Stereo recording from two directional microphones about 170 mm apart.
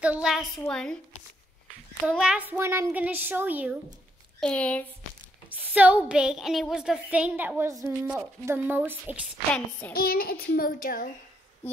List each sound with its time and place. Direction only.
0.0 s a woman's voice: 5° right (ahead or behind)
2.0 s a woman's voice: 5° right (ahead or behind)
4.4 s speech: 5° left (ahead or behind)
5.5 s a woman's voice: 10° right (ahead or behind)
9.5 s speech: 10° left (ahead or behind)
9.9 s a child's voice: 60° left (ahead or behind)